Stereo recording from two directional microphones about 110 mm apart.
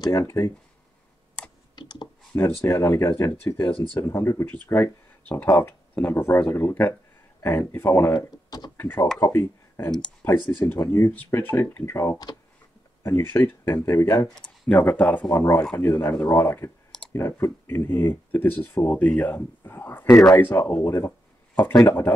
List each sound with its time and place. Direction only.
0.1 s speech: 25° left (ahead or behind)
1.8 s clicking: 45° left (ahead or behind)
2.6 s speech: 25° left (ahead or behind)
8.7 s speech: 20° left (ahead or behind)
13.0 s speech: 20° left (ahead or behind)
14.2 s speech: 5° left (ahead or behind)